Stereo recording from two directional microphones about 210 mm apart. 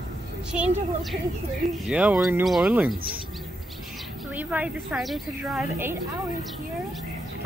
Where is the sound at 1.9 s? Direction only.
5° right (ahead or behind).